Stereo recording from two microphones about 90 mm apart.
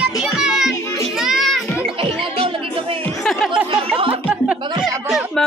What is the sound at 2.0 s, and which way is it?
Music, 85° right.